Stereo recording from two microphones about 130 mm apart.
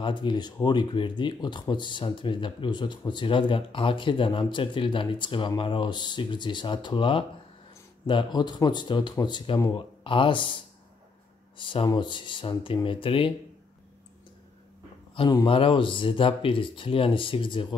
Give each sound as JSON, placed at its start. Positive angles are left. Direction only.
{"t": 0.0, "sound": "speech", "side_deg": 35}
{"t": 15.4, "sound": "speech", "side_deg": 45}